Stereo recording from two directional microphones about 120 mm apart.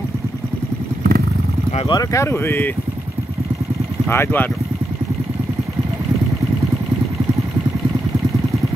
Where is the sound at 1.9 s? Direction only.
30° left (ahead or behind).